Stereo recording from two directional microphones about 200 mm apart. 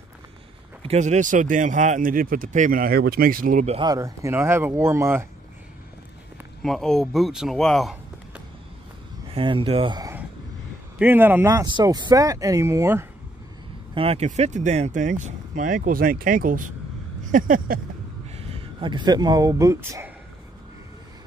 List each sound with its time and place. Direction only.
0.8 s speech: 35° right (ahead or behind)
3.8 s speech: 15° right (ahead or behind)
6.6 s a man's voice: centre (ahead or behind)
9.3 s speech: 25° right (ahead or behind)
11.0 s speech: 10° right (ahead or behind)
13.9 s speech: 30° right (ahead or behind)
17.2 s a sound: 40° right (ahead or behind)
18.3 s speech: 30° right (ahead or behind); by 20.1 s 15° right (ahead or behind)